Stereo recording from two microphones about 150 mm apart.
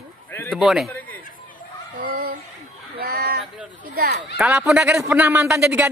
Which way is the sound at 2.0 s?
85° right.